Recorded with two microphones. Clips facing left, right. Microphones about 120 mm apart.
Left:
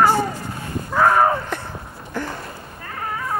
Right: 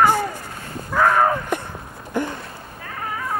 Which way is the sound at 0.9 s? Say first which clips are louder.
Left 1 dB; 10° left (ahead or behind).